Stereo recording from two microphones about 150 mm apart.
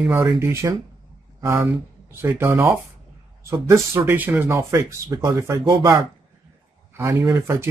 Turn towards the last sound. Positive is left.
turn(degrees=-20)  # may be behind; listen again after turning